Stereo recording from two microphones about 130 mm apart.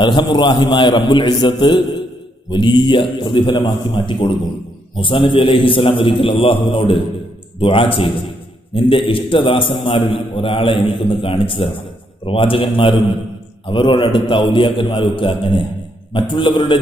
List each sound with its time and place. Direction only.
0.0 s a man's voice: 35° left (ahead or behind)